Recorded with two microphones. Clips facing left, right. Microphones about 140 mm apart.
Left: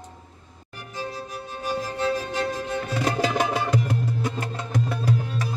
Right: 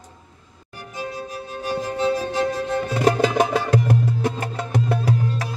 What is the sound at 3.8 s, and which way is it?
Music, 70° right (ahead or behind).